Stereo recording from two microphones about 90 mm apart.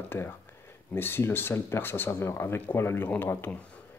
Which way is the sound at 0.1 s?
25° left (ahead or behind).